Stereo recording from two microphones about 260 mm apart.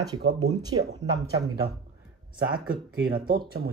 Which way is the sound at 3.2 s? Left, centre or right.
Right.